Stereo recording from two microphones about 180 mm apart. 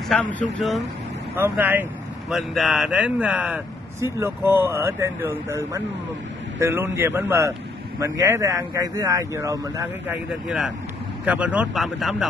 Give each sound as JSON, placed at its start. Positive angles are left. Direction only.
{"t": 0.1, "sound": "speech", "side_deg": 10}
{"t": 1.3, "sound": "speech", "side_deg": -10}
{"t": 11.2, "sound": "speech", "side_deg": -10}